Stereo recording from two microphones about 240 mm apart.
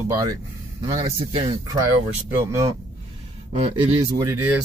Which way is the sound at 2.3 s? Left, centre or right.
Centre.